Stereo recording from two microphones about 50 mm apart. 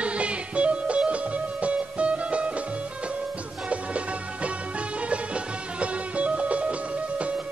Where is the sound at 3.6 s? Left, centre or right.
Right.